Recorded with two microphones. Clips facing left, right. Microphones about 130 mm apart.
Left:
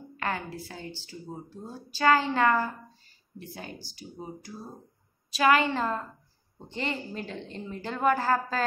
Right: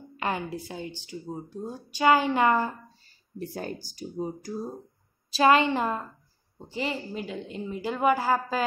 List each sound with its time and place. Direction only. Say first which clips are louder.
0.2 s a woman's voice: right 3 dB; 20° right (ahead or behind)
3.3 s speech: right 7 dB; 40° right (ahead or behind)
5.3 s a woman's voice: right 3 dB; 25° right (ahead or behind); by 8.6 s 10° right (ahead or behind)